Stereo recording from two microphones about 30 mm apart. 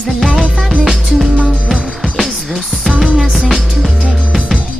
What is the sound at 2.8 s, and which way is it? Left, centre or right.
Music, centre.